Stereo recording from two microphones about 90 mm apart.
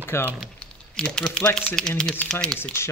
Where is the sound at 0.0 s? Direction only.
25° left (ahead or behind).